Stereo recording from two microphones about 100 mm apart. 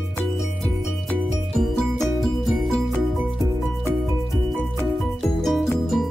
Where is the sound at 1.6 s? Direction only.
Centre (ahead or behind).